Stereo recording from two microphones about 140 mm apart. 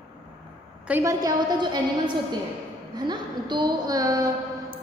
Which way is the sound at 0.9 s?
20° right (ahead or behind).